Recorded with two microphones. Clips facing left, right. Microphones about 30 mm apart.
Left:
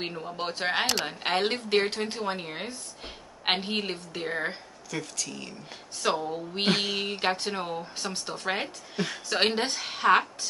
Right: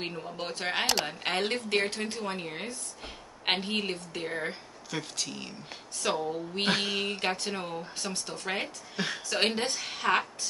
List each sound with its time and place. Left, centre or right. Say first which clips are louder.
0.0 s a woman's voice: left 3 dB; centre
5.1 s speech: even; right
6.3 s a woman's voice: left 2 dB; centre
8.6 s a woman's voice: left 1 dB; centre
9.3 s a woman's voice: left 3 dB; centre